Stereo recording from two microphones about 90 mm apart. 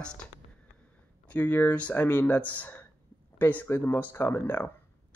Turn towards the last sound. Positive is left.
turn(degrees=25)  # may be behind; listen again after turning